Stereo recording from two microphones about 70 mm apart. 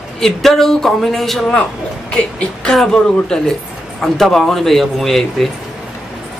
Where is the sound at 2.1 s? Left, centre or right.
Centre.